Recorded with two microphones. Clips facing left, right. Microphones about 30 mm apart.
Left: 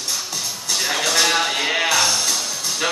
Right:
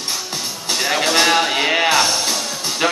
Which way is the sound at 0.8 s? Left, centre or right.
Right.